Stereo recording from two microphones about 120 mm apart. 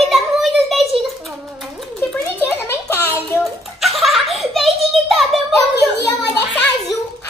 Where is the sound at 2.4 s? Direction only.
15° left (ahead or behind).